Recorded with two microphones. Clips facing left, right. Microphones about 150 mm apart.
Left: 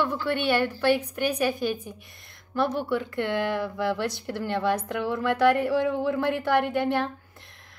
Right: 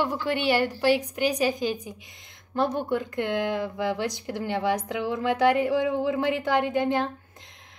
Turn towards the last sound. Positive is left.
turn(degrees=-20)  # may be behind; listen again after turning